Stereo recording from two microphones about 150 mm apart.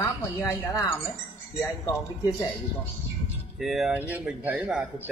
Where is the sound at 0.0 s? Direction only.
20° left (ahead or behind).